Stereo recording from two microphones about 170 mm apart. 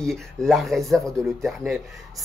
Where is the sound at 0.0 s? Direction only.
5° left (ahead or behind).